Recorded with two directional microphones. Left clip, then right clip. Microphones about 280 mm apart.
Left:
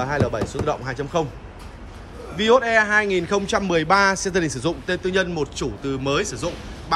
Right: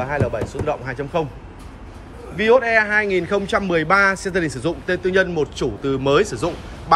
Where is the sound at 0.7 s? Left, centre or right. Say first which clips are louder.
Right 1 dB; centre.